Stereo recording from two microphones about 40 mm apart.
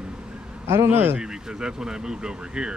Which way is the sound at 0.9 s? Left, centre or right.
Right.